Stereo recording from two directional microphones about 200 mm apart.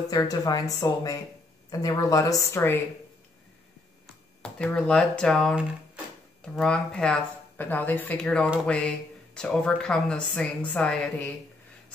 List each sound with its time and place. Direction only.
0.1 s speech: 20° left (ahead or behind)
4.4 s speech: 5° left (ahead or behind)